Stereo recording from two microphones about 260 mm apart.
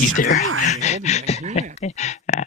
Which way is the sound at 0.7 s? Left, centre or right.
Left.